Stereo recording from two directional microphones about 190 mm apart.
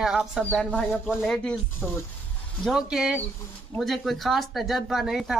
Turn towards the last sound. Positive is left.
turn(degrees=0)  # may be behind; listen again after turning